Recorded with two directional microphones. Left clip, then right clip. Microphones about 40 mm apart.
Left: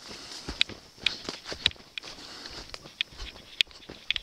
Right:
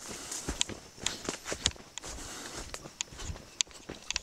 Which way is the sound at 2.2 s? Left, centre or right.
Centre.